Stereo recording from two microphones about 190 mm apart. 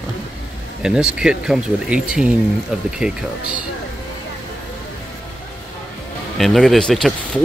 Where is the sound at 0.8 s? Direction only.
5° right (ahead or behind).